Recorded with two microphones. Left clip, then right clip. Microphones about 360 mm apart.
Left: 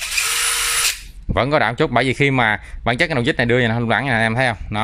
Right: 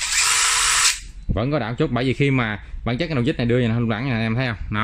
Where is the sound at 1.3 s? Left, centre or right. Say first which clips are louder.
Left 7 dB; centre.